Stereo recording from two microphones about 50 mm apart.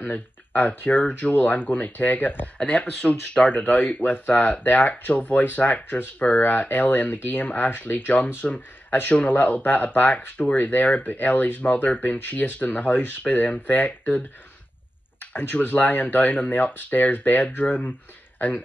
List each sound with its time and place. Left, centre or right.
0.0 s speech: left
2.5 s speech: left
6.4 s speech: left
8.4 s speech: left
15.1 s a sound: left
15.6 s speech: left